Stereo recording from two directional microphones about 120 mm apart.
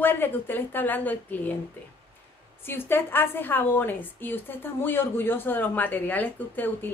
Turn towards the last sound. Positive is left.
turn(degrees=15)  # may be behind; listen again after turning